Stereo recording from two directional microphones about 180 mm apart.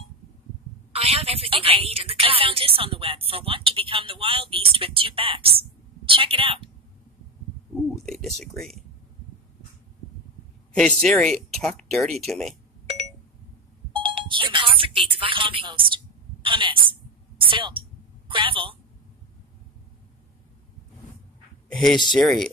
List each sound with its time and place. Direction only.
0.9 s a woman's voice: 30° right (ahead or behind)
7.9 s speech: centre (ahead or behind)
10.7 s speech: 5° left (ahead or behind)
13.9 s a sound: 30° right (ahead or behind)
16.4 s a woman's voice: 30° right (ahead or behind)
21.6 s speech: centre (ahead or behind)